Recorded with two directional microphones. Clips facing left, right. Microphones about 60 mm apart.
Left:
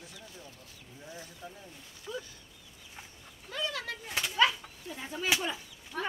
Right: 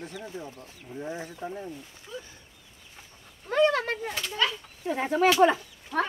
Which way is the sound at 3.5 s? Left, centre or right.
Right.